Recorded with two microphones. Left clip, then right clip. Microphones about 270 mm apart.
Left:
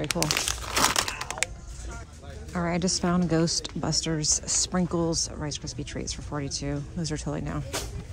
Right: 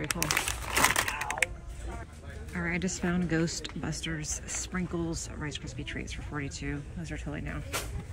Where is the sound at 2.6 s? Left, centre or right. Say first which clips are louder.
Left 5 dB; centre.